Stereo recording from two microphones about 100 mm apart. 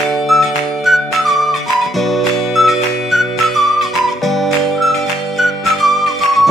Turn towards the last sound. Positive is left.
turn(degrees=0)  # may be behind; listen again after turning